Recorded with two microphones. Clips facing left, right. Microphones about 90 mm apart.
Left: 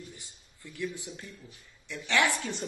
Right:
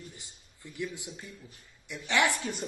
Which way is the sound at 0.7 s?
20° right (ahead or behind).